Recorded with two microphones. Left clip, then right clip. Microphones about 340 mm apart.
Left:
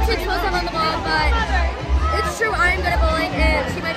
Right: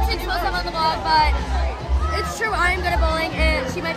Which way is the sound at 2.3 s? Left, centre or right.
Centre.